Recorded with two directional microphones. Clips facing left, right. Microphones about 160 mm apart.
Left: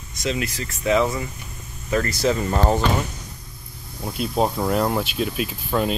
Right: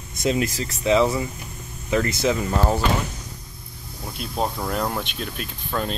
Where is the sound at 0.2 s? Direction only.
40° right (ahead or behind).